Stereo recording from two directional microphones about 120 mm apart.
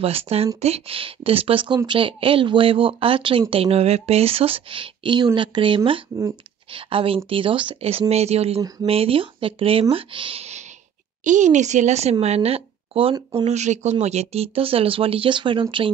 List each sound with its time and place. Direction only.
0.0 s a woman's voice: 55° right (ahead or behind)
8.1 s a woman's voice: 60° right (ahead or behind)
11.2 s a woman's voice: 90° right; by 13.1 s 50° right (ahead or behind)
13.5 s speech: 70° right (ahead or behind); by 15.6 s 45° right (ahead or behind)